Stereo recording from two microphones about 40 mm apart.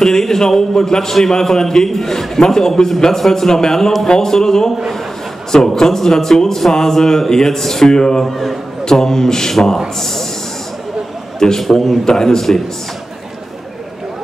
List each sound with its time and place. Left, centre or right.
0.0 s a man's voice: centre
8.3 s a man's voice: centre
8.8 s a man's voice: centre
11.3 s a man's voice: centre